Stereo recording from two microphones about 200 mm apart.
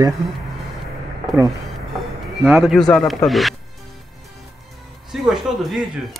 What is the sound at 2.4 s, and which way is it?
Speech, 5° right (ahead or behind).